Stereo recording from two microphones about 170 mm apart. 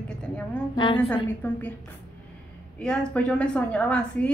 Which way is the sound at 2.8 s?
5° left (ahead or behind).